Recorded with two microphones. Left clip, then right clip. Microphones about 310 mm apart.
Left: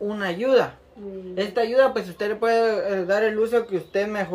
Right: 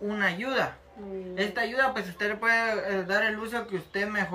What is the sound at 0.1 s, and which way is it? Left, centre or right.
Speech, centre.